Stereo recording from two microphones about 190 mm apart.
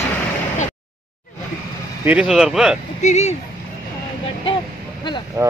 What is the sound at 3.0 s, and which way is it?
Speech, 35° left (ahead or behind).